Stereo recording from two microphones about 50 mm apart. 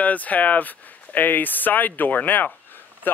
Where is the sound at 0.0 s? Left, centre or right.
Left.